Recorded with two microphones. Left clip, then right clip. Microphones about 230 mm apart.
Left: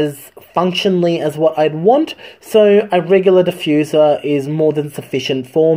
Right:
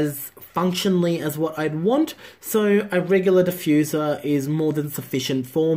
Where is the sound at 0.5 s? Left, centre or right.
Centre.